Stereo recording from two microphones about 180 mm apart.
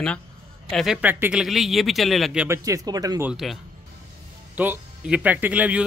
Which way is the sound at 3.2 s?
Centre (ahead or behind).